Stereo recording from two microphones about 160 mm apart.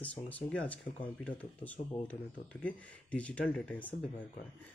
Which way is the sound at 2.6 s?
10° left (ahead or behind).